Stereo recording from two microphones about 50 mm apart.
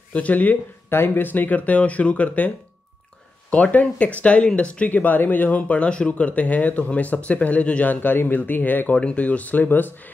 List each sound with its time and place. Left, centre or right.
0.1 s speech: left
0.8 s speech: left
8.9 s speech: left